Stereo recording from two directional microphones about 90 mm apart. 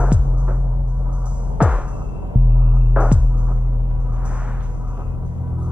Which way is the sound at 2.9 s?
15° right (ahead or behind).